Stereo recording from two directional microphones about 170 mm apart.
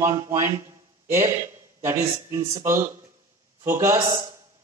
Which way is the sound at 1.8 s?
15° right (ahead or behind).